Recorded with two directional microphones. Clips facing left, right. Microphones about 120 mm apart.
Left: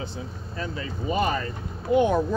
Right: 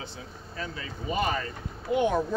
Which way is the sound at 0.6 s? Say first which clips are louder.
Left 5 dB; 40° left (ahead or behind).